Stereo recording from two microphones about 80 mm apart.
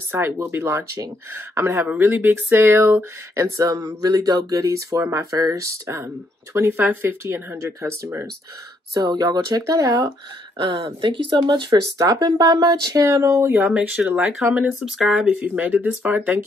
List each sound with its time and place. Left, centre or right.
0.1 s speech: right
8.9 s speech: right
11.0 s speech: right
11.7 s speech: right
13.7 s speech: centre
15.3 s speech: right